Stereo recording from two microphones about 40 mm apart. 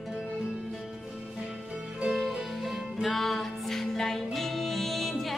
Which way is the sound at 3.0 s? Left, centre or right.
Centre.